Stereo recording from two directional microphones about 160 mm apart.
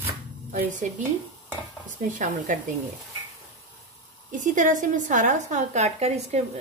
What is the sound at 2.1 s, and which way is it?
Speech, 55° right (ahead or behind).